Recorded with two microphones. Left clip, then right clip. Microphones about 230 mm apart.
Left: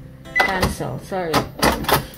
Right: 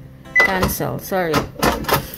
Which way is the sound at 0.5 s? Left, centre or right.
Right.